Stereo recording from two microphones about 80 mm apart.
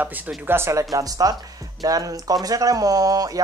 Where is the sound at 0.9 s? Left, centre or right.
Right.